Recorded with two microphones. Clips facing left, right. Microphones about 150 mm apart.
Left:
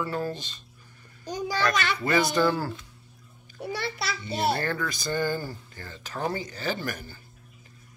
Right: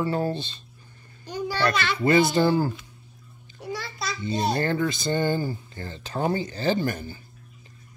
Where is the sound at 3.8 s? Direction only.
65° left (ahead or behind).